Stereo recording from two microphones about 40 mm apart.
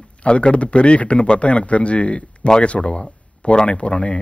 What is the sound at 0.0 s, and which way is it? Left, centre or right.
A man's voice, left.